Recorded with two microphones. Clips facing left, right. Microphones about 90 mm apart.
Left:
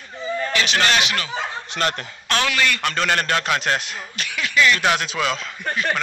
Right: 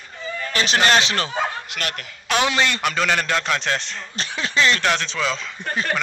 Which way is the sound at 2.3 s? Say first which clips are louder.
Right 1 dB; 25° right (ahead or behind).